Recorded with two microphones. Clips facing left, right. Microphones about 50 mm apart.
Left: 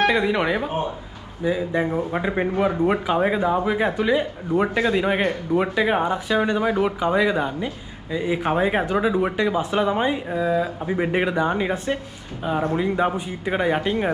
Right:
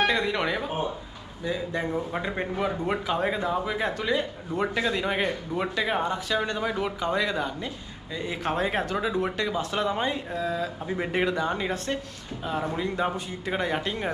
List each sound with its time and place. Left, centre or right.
0.0 s speech: centre